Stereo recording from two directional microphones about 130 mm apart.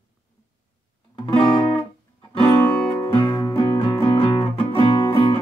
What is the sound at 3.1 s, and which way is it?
Music, 40° left (ahead or behind).